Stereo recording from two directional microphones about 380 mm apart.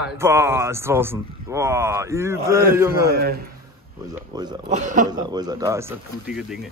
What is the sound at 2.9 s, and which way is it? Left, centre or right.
Speech, right.